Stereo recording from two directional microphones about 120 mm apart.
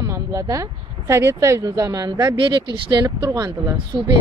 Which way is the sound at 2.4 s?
40° right (ahead or behind).